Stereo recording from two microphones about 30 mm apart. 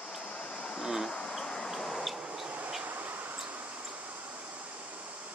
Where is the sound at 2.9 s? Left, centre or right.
Right.